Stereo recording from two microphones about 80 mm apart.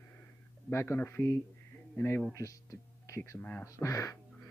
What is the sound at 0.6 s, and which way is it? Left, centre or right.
Speech, left.